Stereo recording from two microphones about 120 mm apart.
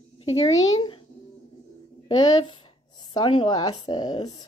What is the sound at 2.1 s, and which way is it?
A woman's voice, 35° left (ahead or behind).